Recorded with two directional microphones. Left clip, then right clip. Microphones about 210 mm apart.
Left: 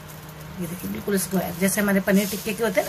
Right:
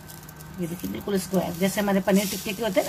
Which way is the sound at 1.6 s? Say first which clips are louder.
Left 3 dB; 20° right (ahead or behind).